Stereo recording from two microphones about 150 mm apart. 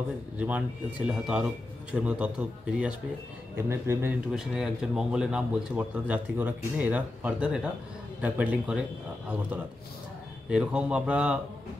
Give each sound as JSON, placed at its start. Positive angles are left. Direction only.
{"t": 0.4, "sound": "speech", "side_deg": -10}
{"t": 4.3, "sound": "speech", "side_deg": -5}
{"t": 10.5, "sound": "speech", "side_deg": -5}